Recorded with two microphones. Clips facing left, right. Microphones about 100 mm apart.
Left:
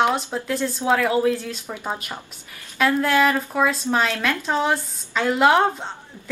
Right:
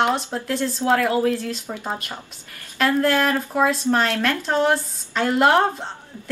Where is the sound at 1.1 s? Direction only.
15° left (ahead or behind).